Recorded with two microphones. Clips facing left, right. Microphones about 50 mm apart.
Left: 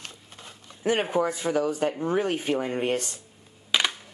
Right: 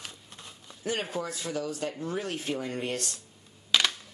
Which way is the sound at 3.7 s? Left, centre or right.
Centre.